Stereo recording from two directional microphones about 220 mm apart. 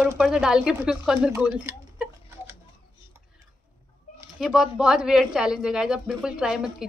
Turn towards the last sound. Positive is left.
turn(degrees=-5)  # may be behind; listen again after turning